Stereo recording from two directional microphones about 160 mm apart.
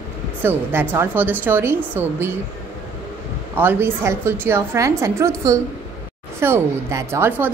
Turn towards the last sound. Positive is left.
turn(degrees=-15)  # may be behind; listen again after turning